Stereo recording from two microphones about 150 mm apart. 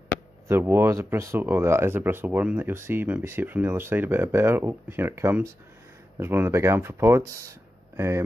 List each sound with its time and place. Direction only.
0.5 s speech: 15° right (ahead or behind)